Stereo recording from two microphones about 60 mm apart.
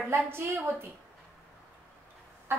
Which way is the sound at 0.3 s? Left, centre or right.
Right.